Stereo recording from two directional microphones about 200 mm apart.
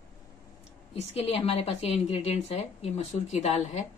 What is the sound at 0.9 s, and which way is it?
A woman's voice, 30° left (ahead or behind).